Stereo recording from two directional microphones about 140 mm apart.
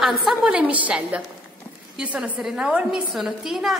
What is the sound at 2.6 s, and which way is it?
Speech, 5° right (ahead or behind).